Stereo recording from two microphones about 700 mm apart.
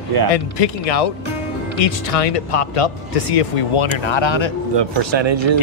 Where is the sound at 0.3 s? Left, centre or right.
Left.